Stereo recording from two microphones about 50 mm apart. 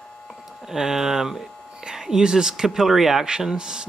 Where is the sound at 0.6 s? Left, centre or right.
Centre.